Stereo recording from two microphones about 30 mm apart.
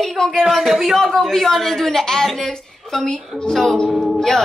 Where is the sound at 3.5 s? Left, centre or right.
Centre.